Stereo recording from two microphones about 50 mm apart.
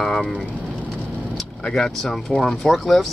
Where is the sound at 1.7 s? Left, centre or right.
Centre.